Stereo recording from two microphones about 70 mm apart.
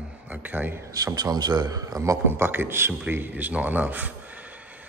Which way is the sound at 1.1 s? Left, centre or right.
Right.